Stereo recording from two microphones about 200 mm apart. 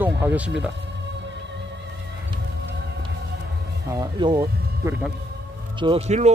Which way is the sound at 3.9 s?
20° right (ahead or behind).